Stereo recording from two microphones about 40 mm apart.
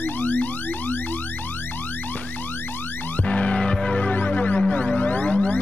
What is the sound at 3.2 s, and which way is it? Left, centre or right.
Music, left.